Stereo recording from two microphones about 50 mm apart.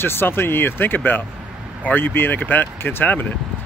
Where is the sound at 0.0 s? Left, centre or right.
Left.